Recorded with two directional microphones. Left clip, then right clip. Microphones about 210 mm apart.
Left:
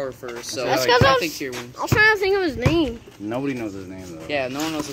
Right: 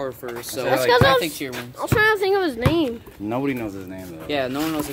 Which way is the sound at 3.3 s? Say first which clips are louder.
Right 1 dB; 20° right (ahead or behind).